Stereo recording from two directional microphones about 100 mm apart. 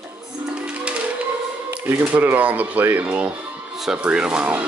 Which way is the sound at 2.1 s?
15° right (ahead or behind).